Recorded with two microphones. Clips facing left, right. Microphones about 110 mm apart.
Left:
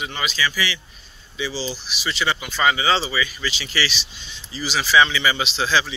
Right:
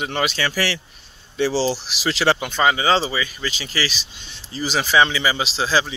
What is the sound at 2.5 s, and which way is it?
Speech, 30° right (ahead or behind).